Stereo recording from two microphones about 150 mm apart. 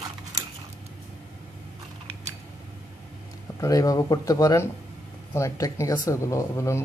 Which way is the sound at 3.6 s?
25° left (ahead or behind).